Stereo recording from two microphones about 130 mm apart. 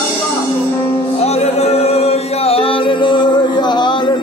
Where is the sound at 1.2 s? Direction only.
55° left (ahead or behind); by 4.1 s 35° left (ahead or behind).